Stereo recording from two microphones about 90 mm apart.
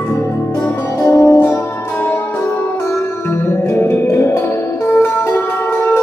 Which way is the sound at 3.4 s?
25° left (ahead or behind).